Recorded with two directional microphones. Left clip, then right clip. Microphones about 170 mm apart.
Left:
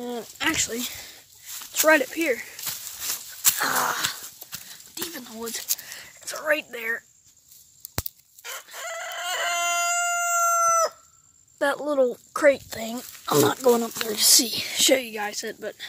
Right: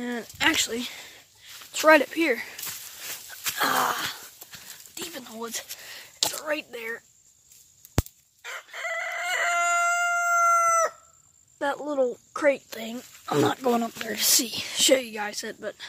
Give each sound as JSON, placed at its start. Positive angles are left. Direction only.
{"t": 0.0, "sound": "speech", "side_deg": -20}
{"t": 0.7, "sound": "speech", "side_deg": 0}
{"t": 1.7, "sound": "speech", "side_deg": -15}
{"t": 3.0, "sound": "a sound", "side_deg": 65}
{"t": 3.5, "sound": "wheeze", "side_deg": -10}
{"t": 5.1, "sound": "a sound", "side_deg": 0}
{"t": 5.4, "sound": "speech", "side_deg": -20}
{"t": 6.3, "sound": "speech", "side_deg": 10}
{"t": 8.4, "sound": "crowing", "side_deg": 10}
{"t": 11.5, "sound": "speech", "side_deg": 15}
{"t": 12.6, "sound": "speech", "side_deg": 0}
{"t": 13.6, "sound": "speech", "side_deg": -10}
{"t": 14.5, "sound": "speech", "side_deg": 10}